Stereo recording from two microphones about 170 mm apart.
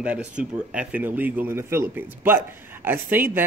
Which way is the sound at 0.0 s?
5° right (ahead or behind).